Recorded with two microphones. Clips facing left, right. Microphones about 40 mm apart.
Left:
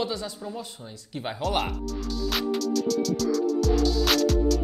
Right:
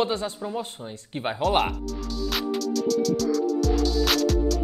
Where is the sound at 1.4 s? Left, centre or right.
Centre.